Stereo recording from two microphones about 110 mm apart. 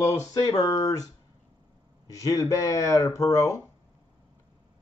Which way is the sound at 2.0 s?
30° left (ahead or behind).